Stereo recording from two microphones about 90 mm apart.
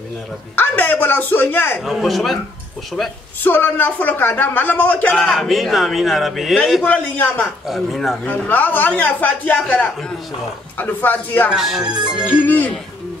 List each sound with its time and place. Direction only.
0.6 s speech: 20° left (ahead or behind)
1.8 s speech: centre (ahead or behind)
3.4 s speech: 20° left (ahead or behind)
5.2 s speech: centre (ahead or behind)
6.8 s speech: 15° left (ahead or behind)
7.6 s speech: centre (ahead or behind)
8.3 s speech: 20° left (ahead or behind)
11.5 s speech: 5° right (ahead or behind)
12.3 s speech: 20° left (ahead or behind)